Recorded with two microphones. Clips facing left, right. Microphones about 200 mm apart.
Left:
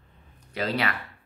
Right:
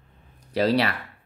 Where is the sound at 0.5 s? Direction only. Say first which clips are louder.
Right 6 dB; 35° right (ahead or behind).